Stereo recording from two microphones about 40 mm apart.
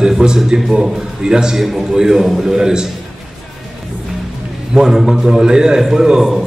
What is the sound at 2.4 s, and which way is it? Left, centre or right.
Speech, centre.